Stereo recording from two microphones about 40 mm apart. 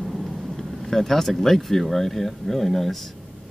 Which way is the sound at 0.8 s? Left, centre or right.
Centre.